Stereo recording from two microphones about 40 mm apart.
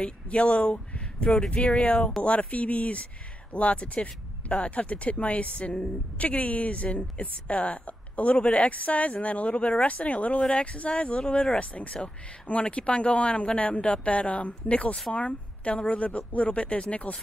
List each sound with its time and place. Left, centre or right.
0.0 s a woman's voice: left